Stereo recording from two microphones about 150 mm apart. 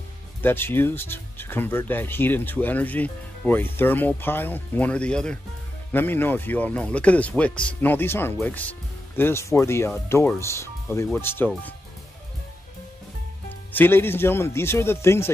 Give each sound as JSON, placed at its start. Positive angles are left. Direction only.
{"t": 0.4, "sound": "speech", "side_deg": 15}
{"t": 13.7, "sound": "speech", "side_deg": 15}